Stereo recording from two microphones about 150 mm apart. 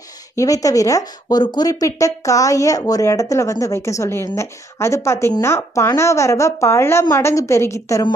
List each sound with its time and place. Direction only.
0.4 s speech: 20° left (ahead or behind)